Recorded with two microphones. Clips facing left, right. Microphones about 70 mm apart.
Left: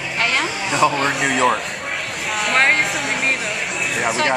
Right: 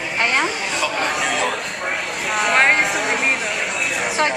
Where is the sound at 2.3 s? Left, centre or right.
Centre.